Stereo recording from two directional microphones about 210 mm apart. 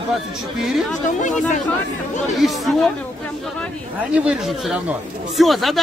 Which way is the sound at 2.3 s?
Centre (ahead or behind).